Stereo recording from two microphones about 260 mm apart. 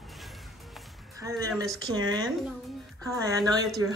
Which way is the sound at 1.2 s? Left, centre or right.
Centre.